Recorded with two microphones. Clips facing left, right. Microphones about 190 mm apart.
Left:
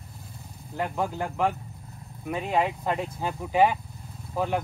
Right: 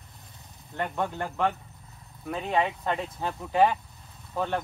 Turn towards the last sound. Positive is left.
turn(degrees=0)  # may be behind; listen again after turning